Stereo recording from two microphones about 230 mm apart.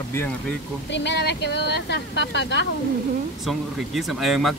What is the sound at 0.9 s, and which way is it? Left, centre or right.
Speech, left.